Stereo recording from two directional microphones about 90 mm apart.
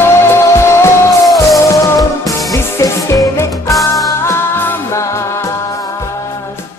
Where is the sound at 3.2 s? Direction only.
40° left (ahead or behind).